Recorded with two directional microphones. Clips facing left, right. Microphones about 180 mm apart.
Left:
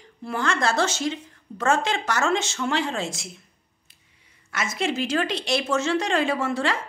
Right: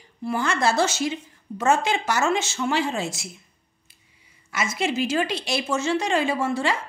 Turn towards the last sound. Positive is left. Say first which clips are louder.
# right 1 dB
turn(degrees=0)  # may be behind; listen again after turning